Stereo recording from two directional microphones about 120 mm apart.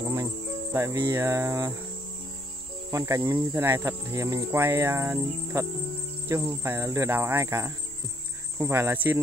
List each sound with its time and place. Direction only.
0.0 s cricket: 25° right (ahead or behind)
0.7 s speech: 25° right (ahead or behind)
2.9 s speech: 25° right (ahead or behind)